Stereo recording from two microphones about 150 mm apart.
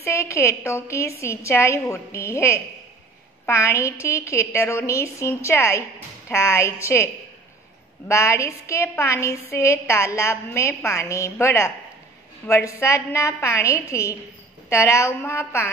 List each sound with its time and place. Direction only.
0.0 s a woman's voice: 20° left (ahead or behind)
8.1 s a woman's voice: 20° left (ahead or behind)